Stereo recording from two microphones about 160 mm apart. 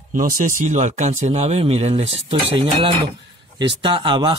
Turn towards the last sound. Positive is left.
turn(degrees=-30)  # may be behind; listen again after turning